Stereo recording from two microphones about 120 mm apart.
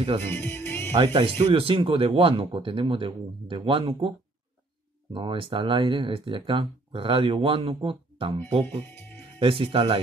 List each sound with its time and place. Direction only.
0.2 s speech: 20° left (ahead or behind)
0.9 s speech: 45° right (ahead or behind)
5.1 s speech: 40° right (ahead or behind)
9.4 s speech: 45° right (ahead or behind)